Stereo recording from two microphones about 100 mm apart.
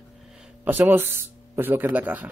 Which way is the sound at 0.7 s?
20° right (ahead or behind).